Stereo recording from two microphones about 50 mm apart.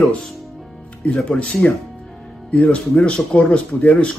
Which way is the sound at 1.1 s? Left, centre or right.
Centre.